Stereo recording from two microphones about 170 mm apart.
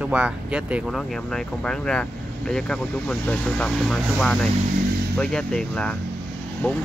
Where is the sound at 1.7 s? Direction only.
5° left (ahead or behind).